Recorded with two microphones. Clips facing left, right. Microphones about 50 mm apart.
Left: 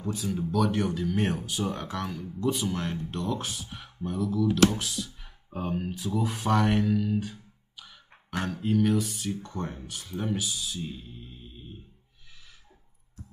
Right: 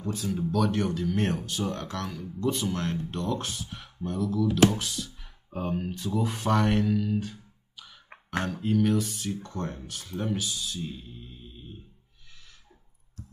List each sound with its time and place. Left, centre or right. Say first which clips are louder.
0.0 s speech: right 1 dB; centre